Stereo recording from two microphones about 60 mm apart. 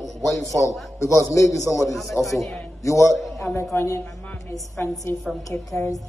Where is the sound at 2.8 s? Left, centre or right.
Left.